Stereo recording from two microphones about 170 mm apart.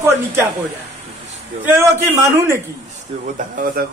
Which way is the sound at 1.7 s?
15° right (ahead or behind).